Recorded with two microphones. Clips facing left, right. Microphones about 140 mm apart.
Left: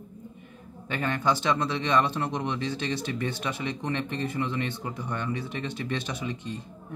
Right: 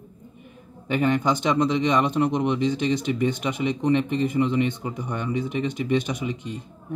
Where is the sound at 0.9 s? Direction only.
15° right (ahead or behind).